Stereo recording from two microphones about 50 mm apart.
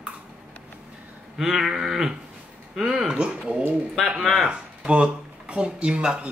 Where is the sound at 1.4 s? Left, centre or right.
Centre.